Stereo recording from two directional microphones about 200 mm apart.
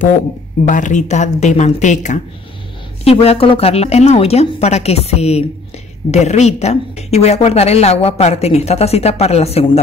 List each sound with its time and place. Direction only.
0.7 s a woman's voice: 40° left (ahead or behind)